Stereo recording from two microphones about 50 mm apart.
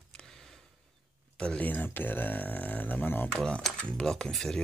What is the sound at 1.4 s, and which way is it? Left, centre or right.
Speech, left.